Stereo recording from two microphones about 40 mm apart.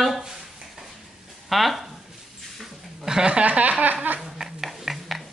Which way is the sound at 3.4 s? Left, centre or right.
Right.